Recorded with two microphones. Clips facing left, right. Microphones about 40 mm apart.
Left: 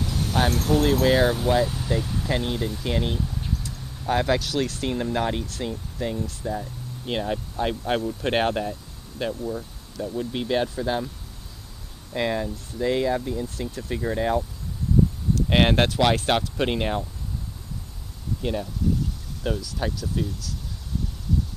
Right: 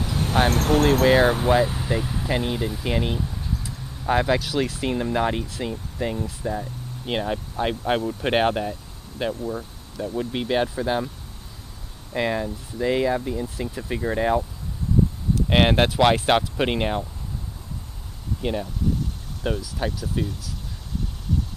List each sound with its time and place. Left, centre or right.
0.0 s vehicle: right
0.5 s speech: right
1.0 s speech: right
9.3 s speech: right
12.1 s speech: centre
18.4 s speech: centre
19.6 s speech: centre